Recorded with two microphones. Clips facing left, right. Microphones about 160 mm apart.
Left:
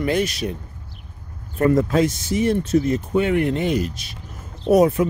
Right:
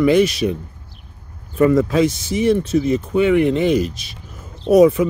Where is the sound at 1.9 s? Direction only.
90° right.